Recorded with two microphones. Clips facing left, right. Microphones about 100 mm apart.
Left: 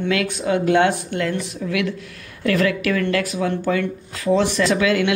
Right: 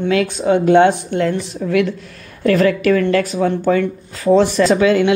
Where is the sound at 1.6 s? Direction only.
40° right (ahead or behind).